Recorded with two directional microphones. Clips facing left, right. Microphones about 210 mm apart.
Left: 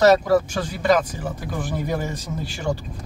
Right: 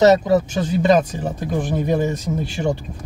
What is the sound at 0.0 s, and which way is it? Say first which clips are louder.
Speech: right 2 dB; 20° right (ahead or behind).